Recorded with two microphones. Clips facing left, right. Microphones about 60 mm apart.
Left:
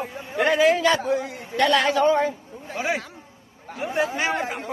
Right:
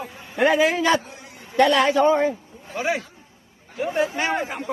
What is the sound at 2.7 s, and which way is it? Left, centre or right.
A man's voice, centre.